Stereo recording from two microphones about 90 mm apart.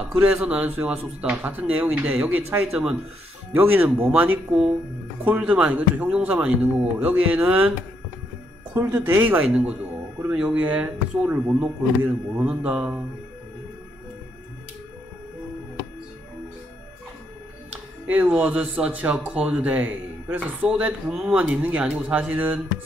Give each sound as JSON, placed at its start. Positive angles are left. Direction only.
{"t": 0.2, "sound": "speech", "side_deg": -10}
{"t": 2.7, "sound": "speech", "side_deg": -10}
{"t": 3.5, "sound": "speech", "side_deg": -20}
{"t": 8.9, "sound": "speech", "side_deg": -20}
{"t": 18.0, "sound": "speech", "side_deg": -15}
{"t": 21.1, "sound": "speech", "side_deg": -5}
{"t": 21.4, "sound": "speech", "side_deg": -15}